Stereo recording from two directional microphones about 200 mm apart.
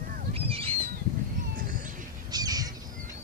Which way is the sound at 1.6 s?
45° right (ahead or behind).